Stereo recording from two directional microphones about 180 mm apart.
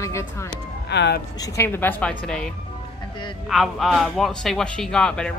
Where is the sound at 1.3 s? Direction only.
20° left (ahead or behind).